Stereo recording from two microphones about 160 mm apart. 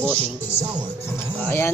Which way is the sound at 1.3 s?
15° left (ahead or behind).